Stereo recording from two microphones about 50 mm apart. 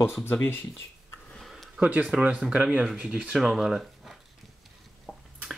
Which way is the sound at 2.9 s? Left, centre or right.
Right.